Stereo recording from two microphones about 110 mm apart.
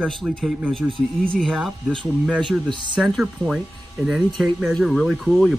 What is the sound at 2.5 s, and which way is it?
Speech, 45° right (ahead or behind).